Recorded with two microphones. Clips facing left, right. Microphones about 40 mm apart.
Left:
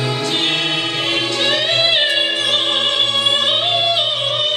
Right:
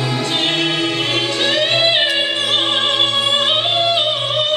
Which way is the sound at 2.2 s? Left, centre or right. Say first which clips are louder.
Even; centre.